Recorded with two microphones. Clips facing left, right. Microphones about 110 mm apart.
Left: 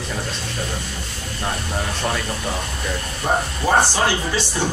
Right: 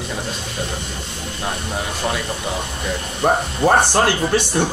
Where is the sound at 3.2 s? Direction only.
55° right (ahead or behind).